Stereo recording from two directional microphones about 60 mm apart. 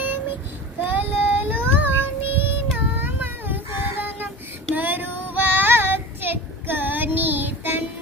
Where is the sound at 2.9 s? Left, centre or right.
Right.